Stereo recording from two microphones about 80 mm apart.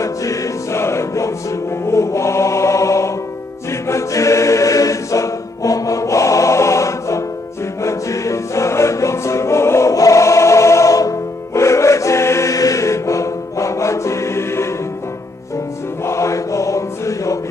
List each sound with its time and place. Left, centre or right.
0.0 s music: left
3.8 s choir: left
7.8 s music: left
16.0 s mantra: left